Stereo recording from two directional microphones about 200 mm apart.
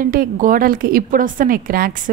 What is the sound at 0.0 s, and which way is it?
A woman's voice, 45° right (ahead or behind).